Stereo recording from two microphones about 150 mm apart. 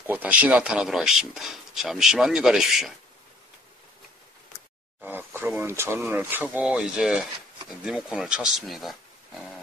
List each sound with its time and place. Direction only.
0.0 s speech: 10° right (ahead or behind)
5.0 s a sound: 15° right (ahead or behind)
5.6 s speech: 15° right (ahead or behind); by 9.5 s centre (ahead or behind)